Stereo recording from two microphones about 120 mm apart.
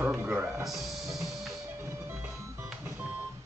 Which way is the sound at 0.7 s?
Centre (ahead or behind).